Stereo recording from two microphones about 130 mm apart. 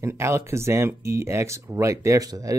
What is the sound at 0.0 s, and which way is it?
Speech, 20° right (ahead or behind).